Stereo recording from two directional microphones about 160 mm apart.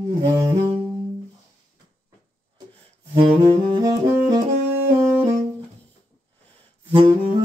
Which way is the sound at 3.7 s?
25° right (ahead or behind).